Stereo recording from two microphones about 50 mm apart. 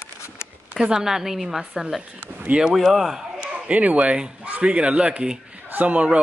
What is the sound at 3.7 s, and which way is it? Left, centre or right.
Speech, right.